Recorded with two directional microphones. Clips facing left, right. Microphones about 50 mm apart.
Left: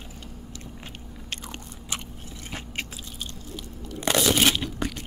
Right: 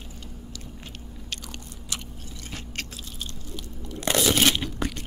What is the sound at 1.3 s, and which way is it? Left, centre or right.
Biting, left.